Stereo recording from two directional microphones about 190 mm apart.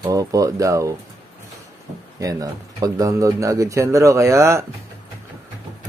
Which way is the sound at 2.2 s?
20° right (ahead or behind).